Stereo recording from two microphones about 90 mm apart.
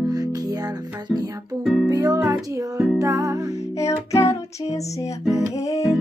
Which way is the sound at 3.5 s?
35° left (ahead or behind).